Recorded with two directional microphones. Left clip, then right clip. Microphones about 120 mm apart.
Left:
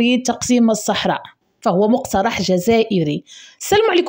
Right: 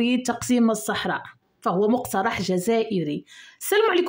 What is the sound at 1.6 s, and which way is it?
A woman's voice, 35° left (ahead or behind).